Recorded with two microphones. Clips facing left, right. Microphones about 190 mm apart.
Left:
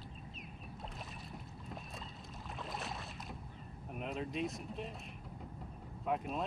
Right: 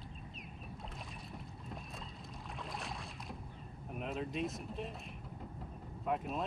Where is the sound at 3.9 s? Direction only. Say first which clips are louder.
Right 1 dB; centre (ahead or behind).